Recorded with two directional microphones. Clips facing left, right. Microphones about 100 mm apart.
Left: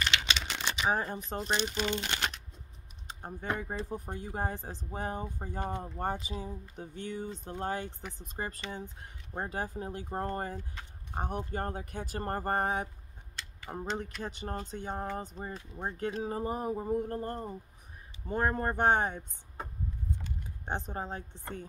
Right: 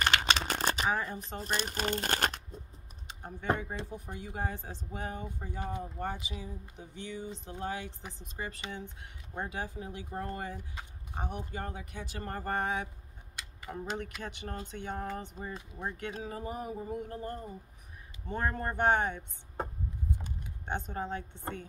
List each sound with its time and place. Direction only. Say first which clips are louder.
0.0 s a sound: right 4 dB; 45° right (ahead or behind)
0.8 s speech: left 1 dB; 35° left (ahead or behind)
1.4 s speech: left 2 dB; 45° right (ahead or behind)
3.1 s typing: left 2 dB; 40° left (ahead or behind)
3.6 s speech: left 3 dB; 40° left (ahead or behind)
20.6 s speech: even; 35° left (ahead or behind)